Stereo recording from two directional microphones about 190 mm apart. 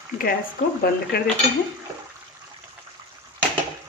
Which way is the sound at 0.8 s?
55° left (ahead or behind).